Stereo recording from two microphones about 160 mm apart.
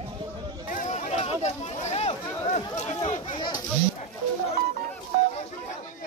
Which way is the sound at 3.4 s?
25° left (ahead or behind).